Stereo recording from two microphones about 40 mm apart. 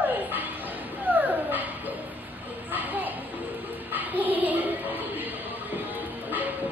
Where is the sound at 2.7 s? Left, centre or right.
Right.